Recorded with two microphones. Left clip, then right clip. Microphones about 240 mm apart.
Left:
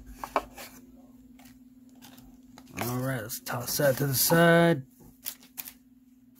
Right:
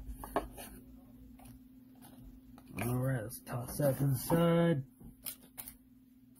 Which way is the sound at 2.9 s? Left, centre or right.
Centre.